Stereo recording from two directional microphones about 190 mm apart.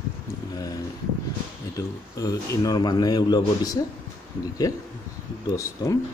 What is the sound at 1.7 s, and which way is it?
A man's voice, 20° left (ahead or behind).